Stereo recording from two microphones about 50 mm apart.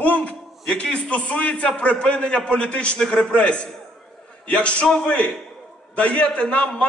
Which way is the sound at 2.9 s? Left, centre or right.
Centre.